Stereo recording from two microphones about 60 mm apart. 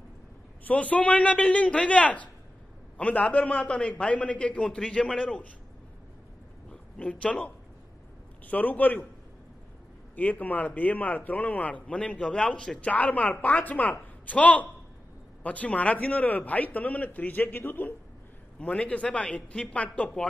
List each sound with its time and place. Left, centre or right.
0.7 s a man's voice: left
4.6 s a man's voice: centre
5.0 s a man's voice: centre
6.7 s a man's voice: centre
10.1 s a man's voice: left
18.6 s a man's voice: left